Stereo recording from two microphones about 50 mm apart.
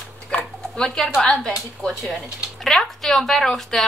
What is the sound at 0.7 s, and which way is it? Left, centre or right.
Speech, centre.